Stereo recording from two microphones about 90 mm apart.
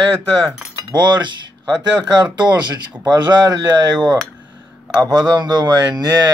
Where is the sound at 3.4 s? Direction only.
45° right (ahead or behind).